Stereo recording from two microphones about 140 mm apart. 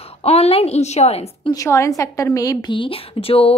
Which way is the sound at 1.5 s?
20° left (ahead or behind).